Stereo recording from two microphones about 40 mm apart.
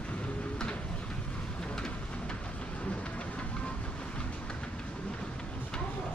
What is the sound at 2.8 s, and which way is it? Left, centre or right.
Train, left.